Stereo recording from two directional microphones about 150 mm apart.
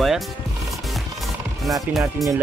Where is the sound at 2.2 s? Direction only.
Centre (ahead or behind).